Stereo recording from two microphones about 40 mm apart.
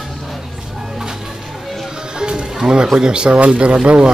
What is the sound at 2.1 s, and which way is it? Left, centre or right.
Music, right.